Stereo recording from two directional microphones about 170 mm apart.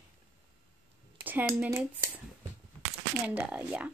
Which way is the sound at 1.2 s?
10° right (ahead or behind).